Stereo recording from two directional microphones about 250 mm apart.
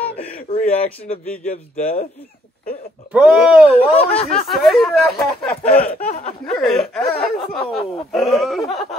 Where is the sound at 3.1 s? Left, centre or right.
Centre.